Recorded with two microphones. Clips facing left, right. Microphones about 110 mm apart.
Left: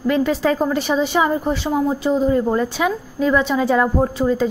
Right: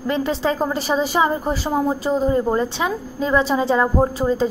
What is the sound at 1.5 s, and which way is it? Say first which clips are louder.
Speech: left 1 dB; centre (ahead or behind).